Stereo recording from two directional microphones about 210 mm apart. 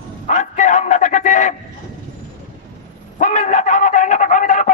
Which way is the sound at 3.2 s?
35° left (ahead or behind).